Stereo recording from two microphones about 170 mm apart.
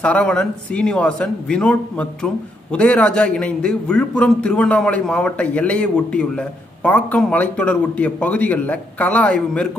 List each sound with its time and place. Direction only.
0.0 s speech: 5° left (ahead or behind)